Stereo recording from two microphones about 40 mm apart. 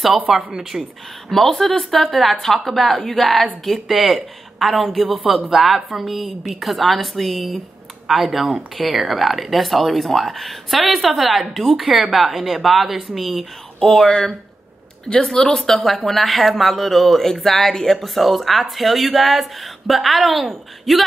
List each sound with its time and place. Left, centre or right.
0.6 s speech: centre
1.3 s speech: centre
13.7 s speech: centre
15.3 s speech: centre